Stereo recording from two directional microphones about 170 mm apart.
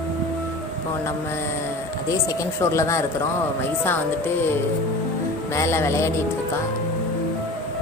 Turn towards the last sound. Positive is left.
turn(degrees=15)  # may be behind; listen again after turning